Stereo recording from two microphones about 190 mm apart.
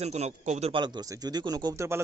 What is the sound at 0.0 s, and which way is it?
A man's voice, 35° right (ahead or behind).